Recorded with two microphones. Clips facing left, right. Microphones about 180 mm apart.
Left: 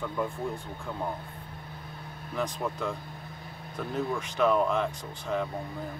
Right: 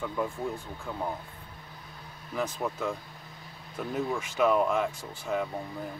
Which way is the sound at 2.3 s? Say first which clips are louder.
Even; 5° right (ahead or behind).